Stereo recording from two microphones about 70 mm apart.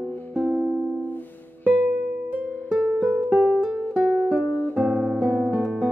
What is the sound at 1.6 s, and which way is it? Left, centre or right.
Music, right.